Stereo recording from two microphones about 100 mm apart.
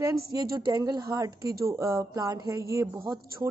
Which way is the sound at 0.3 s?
35° right (ahead or behind).